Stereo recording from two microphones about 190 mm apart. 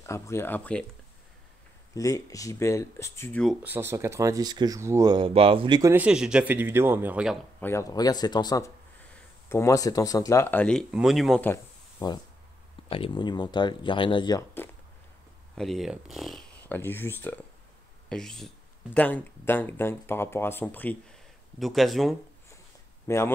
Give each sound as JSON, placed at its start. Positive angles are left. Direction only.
{"t": 0.0, "sound": "speech", "side_deg": 15}
{"t": 2.0, "sound": "speech", "side_deg": 15}
{"t": 3.6, "sound": "speech", "side_deg": -10}
{"t": 7.6, "sound": "speech", "side_deg": 15}
{"t": 11.4, "sound": "a sound", "side_deg": 20}
{"t": 12.9, "sound": "speech", "side_deg": 25}
{"t": 15.5, "sound": "speech", "side_deg": 0}
{"t": 23.0, "sound": "speech", "side_deg": 15}